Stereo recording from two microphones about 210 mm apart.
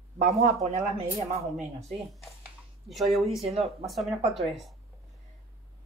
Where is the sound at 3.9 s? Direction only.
Centre (ahead or behind).